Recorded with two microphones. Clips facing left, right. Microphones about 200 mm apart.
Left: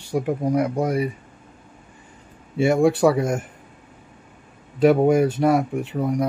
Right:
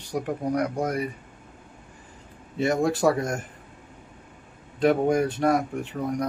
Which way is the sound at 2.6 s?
5° left (ahead or behind).